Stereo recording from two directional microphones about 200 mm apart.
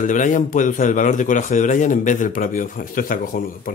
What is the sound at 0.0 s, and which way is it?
Speech, 40° left (ahead or behind).